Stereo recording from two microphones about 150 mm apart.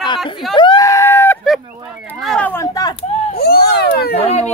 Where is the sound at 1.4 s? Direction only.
Centre (ahead or behind).